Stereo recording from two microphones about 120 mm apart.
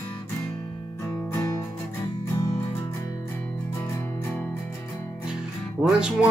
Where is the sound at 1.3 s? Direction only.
25° left (ahead or behind).